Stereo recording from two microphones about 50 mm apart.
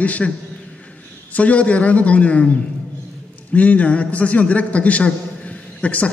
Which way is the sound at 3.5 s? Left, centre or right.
Left.